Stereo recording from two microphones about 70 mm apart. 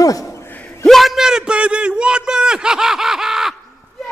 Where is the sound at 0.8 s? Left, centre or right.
Centre.